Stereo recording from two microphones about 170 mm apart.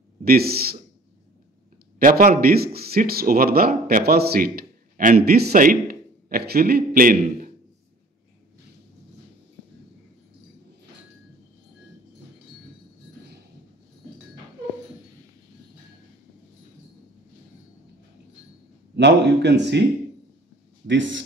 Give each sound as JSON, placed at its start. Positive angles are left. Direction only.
{"t": 0.2, "sound": "a man's voice", "side_deg": -65}
{"t": 2.0, "sound": "a man's voice", "side_deg": -55}
{"t": 18.9, "sound": "speech", "side_deg": -90}
{"t": 20.8, "sound": "speech", "side_deg": -90}